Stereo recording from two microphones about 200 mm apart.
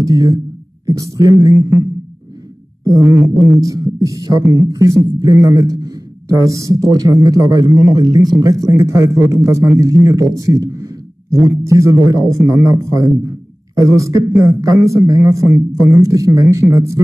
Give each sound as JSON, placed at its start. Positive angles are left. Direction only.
{"t": 0.0, "sound": "speech", "side_deg": -15}